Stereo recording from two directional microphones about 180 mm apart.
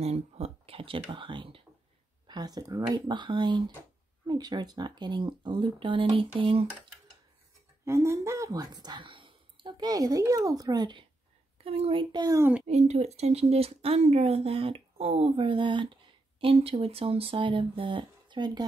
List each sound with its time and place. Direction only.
0.0 s speech: 35° right (ahead or behind)
7.8 s speech: 15° right (ahead or behind)
12.6 s speech: 40° right (ahead or behind); by 18.7 s 25° right (ahead or behind)